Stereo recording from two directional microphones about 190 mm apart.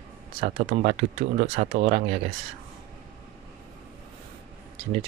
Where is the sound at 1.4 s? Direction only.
45° right (ahead or behind).